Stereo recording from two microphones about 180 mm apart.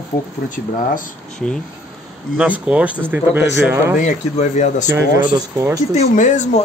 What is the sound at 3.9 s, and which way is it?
Speech, 45° left (ahead or behind).